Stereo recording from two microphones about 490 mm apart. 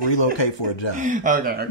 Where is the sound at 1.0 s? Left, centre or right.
Centre.